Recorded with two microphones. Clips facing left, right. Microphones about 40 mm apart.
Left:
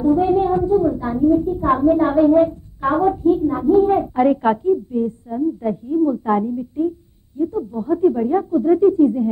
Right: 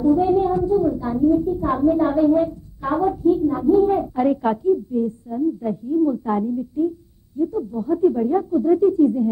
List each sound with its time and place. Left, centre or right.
0.0 s a child's voice: left